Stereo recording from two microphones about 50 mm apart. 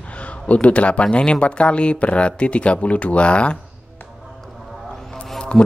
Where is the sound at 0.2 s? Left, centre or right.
Left.